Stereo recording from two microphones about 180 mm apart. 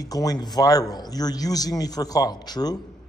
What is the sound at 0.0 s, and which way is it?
A man's voice, 20° left (ahead or behind).